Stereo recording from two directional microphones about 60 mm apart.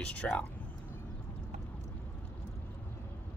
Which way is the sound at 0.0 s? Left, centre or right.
Left.